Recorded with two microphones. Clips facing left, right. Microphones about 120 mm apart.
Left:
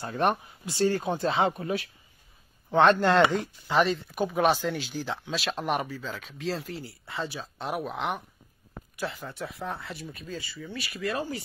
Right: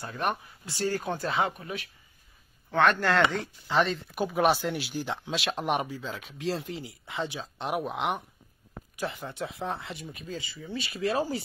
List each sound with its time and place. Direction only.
0.0 s speech: 35° left (ahead or behind)
2.7 s speech: 20° left (ahead or behind)
3.3 s speech: 10° left (ahead or behind); by 11.3 s 30° right (ahead or behind)